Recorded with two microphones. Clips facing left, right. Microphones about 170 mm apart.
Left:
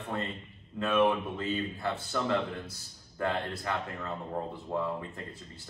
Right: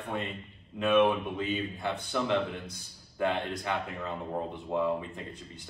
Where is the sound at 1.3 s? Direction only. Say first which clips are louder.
Right 1 dB; 15° right (ahead or behind).